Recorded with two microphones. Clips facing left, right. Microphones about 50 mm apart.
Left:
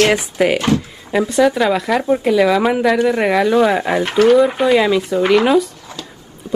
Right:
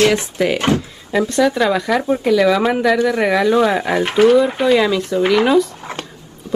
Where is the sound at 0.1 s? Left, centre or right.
Centre.